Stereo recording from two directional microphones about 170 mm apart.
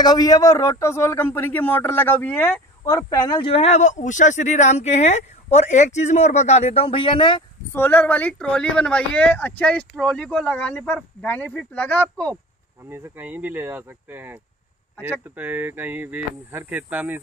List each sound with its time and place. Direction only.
0.0 s speech: 25° left (ahead or behind)
7.7 s speech: 10° left (ahead or behind)
12.9 s speech: 15° right (ahead or behind)